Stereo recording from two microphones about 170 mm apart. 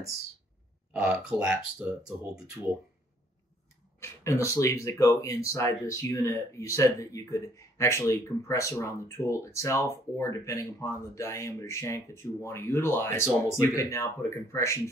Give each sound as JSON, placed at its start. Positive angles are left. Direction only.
{"t": 0.9, "sound": "speech", "side_deg": -5}
{"t": 4.0, "sound": "speech", "side_deg": 15}